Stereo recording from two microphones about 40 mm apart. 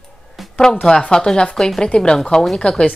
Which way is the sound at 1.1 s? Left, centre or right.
Centre.